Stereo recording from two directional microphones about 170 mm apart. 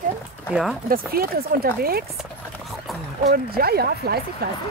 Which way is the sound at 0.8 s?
60° right (ahead or behind).